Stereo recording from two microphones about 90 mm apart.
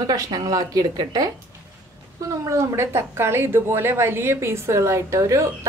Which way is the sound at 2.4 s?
35° right (ahead or behind).